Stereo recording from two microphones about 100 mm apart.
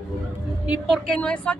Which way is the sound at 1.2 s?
10° left (ahead or behind).